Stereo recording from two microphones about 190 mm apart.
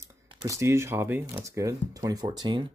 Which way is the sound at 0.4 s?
15° right (ahead or behind).